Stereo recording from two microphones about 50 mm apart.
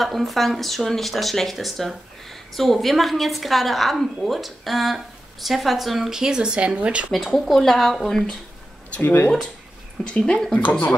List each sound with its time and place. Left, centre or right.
0.0 s speech: centre; by 7.1 s right
7.1 s speech: centre
10.0 s speech: centre